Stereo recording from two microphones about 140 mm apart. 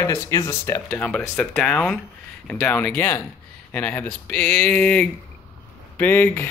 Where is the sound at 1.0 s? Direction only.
5° left (ahead or behind).